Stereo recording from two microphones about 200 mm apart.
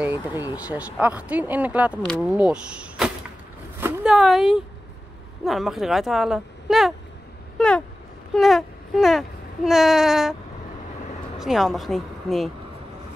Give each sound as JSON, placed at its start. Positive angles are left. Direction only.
{"t": 0.0, "sound": "speech", "side_deg": -10}
{"t": 7.5, "sound": "a sound", "side_deg": 5}
{"t": 8.4, "sound": "speech", "side_deg": 0}
{"t": 11.3, "sound": "speech", "side_deg": 0}